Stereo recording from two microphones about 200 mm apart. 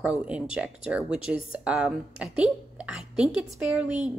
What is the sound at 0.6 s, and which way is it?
A woman's voice, 5° right (ahead or behind).